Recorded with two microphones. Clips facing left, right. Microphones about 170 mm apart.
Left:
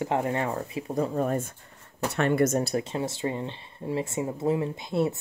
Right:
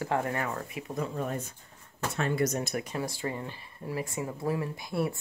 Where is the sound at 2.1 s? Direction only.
60° left (ahead or behind).